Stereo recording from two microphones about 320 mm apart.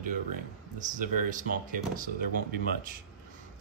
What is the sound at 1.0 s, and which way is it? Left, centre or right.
Speech, right.